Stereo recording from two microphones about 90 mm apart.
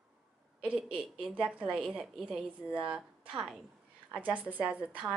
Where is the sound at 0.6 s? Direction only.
15° right (ahead or behind).